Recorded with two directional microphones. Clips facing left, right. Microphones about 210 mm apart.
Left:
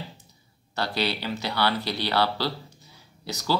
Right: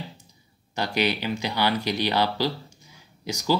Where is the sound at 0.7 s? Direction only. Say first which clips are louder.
Right 3 dB; 15° right (ahead or behind).